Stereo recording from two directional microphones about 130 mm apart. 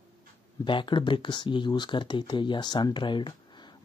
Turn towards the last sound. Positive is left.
turn(degrees=40)  # may be behind; listen again after turning